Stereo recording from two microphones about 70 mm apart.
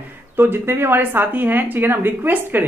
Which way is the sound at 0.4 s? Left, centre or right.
Right.